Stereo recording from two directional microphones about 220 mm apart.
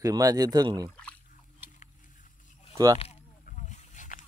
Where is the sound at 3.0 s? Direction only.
30° left (ahead or behind).